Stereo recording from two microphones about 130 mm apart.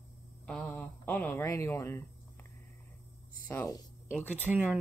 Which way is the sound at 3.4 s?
20° left (ahead or behind).